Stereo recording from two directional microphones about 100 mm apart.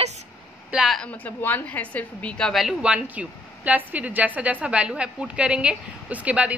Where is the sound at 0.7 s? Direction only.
5° right (ahead or behind).